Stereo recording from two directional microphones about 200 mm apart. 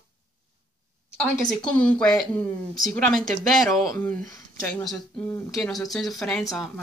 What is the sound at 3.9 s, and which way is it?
Speech, 5° left (ahead or behind).